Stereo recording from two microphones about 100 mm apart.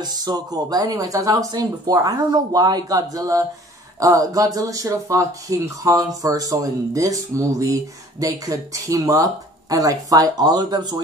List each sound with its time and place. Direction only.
0.0 s speech: 45° right (ahead or behind)